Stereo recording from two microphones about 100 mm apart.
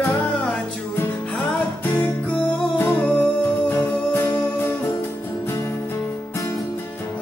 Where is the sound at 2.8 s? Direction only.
20° left (ahead or behind).